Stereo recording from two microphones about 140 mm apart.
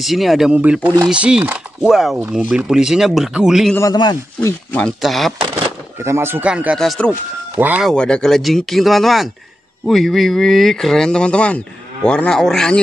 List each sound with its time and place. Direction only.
0.0 s speech: centre (ahead or behind)
3.9 s speech: 30° left (ahead or behind)
4.4 s speech: 20° left (ahead or behind)
4.8 s speech: centre (ahead or behind)
5.9 s speech: 20° right (ahead or behind)
6.8 s speech: 5° left (ahead or behind)
7.1 s speech: 10° right (ahead or behind)
7.8 s speech: 5° left (ahead or behind)